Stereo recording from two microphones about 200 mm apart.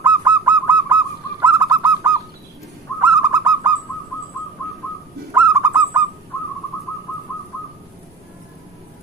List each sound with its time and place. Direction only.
0.0 s honk: 10° right (ahead or behind)
1.4 s bird: 15° right (ahead or behind)
3.0 s owl: 15° right (ahead or behind)
5.3 s bird: 10° right (ahead or behind)